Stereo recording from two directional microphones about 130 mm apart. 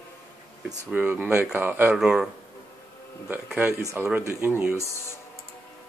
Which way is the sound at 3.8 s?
25° right (ahead or behind).